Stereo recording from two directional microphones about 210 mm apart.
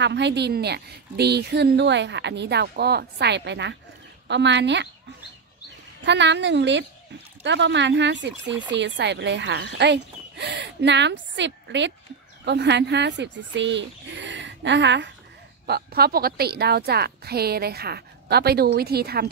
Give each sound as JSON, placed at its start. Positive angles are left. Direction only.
{"t": 0.0, "sound": "a woman's voice", "side_deg": -55}
{"t": 6.0, "sound": "speech", "side_deg": -55}
{"t": 15.6, "sound": "a woman's voice", "side_deg": -50}